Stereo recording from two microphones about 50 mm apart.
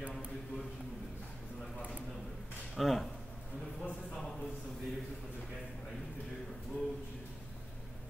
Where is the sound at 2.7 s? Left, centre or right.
Centre.